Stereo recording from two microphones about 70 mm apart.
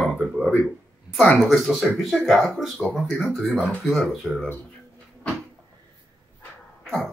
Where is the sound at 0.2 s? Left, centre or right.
Centre.